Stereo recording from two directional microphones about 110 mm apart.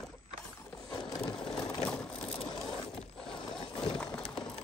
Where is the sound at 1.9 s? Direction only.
10° left (ahead or behind).